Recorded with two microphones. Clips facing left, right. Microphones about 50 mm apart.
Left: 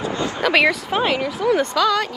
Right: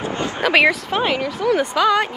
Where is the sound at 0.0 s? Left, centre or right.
Right.